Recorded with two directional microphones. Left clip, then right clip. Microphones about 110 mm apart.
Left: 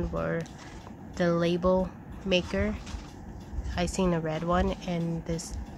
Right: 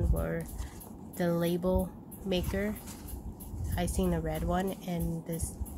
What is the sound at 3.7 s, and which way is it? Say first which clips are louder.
Speech: left 4 dB; 25° left (ahead or behind).